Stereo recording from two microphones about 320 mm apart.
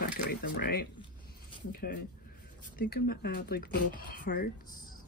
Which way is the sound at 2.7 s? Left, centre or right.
Left.